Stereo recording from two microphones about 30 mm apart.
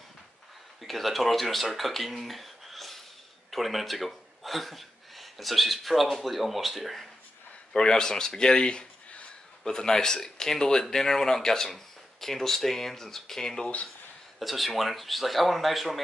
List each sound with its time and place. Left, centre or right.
0.8 s speech: centre
7.7 s speech: left
14.4 s speech: centre